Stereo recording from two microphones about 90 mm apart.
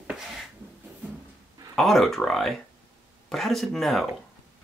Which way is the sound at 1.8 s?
Centre (ahead or behind).